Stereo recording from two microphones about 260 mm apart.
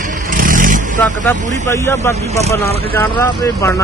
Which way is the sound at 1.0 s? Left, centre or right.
Centre.